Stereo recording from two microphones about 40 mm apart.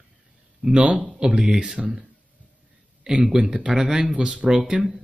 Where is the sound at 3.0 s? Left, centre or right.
Centre.